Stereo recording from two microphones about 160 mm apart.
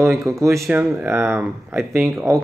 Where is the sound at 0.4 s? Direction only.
20° right (ahead or behind).